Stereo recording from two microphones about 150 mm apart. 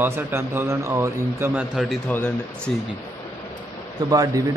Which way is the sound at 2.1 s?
10° left (ahead or behind).